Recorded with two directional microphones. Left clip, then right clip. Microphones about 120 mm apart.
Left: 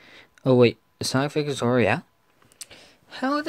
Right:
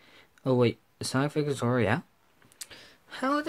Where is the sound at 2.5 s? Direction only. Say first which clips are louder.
Left 2 dB; 10° left (ahead or behind).